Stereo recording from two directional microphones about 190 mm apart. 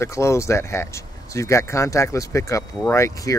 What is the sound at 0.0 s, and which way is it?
Speech, 15° left (ahead or behind).